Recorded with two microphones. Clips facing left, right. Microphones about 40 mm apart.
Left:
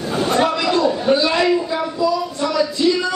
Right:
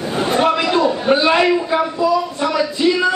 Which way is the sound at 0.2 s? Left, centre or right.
Right.